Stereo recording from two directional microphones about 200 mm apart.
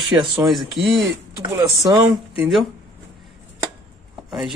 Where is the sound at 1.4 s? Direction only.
20° right (ahead or behind).